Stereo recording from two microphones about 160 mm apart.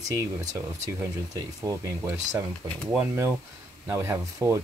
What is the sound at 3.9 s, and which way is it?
Speech, 15° right (ahead or behind).